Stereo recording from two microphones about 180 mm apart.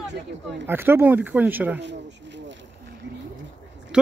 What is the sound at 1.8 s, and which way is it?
Speech, 75° right (ahead or behind).